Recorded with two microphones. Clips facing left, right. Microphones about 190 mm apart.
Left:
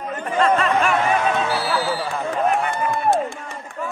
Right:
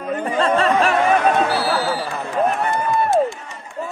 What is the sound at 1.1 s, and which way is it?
Music, 55° right (ahead or behind).